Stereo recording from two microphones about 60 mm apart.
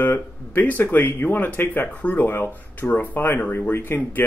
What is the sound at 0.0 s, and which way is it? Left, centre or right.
Speech, left.